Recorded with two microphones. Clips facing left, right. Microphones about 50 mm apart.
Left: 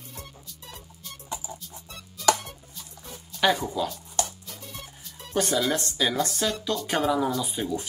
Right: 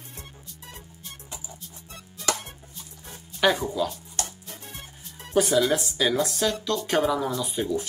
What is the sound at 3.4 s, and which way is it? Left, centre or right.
Speech, centre.